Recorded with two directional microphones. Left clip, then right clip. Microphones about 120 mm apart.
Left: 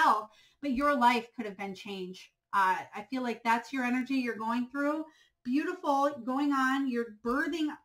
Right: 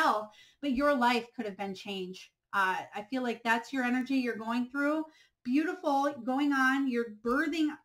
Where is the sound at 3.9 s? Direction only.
5° left (ahead or behind).